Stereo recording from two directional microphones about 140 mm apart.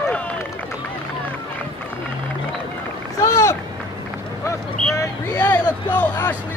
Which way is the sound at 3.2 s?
20° left (ahead or behind).